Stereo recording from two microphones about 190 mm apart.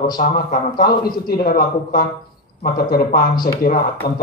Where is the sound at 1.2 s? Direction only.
50° left (ahead or behind).